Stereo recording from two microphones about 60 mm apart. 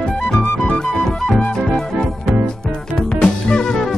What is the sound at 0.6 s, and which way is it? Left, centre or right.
Music, centre.